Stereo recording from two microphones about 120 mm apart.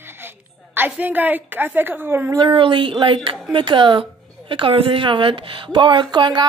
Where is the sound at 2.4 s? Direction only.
45° right (ahead or behind).